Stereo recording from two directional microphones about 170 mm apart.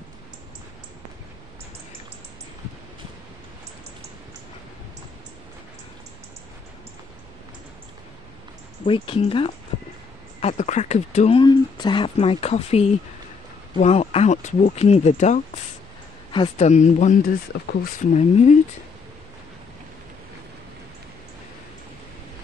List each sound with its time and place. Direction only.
8.8 s speech: 30° left (ahead or behind)
11.4 s speech: 25° left (ahead or behind); by 15.4 s 45° left (ahead or behind)
16.5 s speech: 45° left (ahead or behind)